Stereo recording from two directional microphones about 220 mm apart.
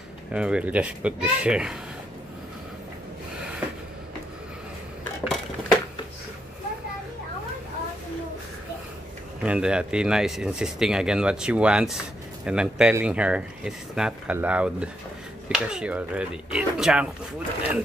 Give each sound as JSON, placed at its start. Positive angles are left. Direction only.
{"t": 0.3, "sound": "speech", "side_deg": -5}
{"t": 5.2, "sound": "dishes", "side_deg": 0}
{"t": 9.4, "sound": "speech", "side_deg": -5}